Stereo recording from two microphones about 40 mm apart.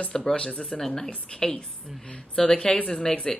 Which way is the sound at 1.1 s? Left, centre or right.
Left.